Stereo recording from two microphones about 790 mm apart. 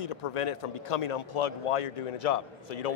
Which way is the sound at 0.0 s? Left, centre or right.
Left.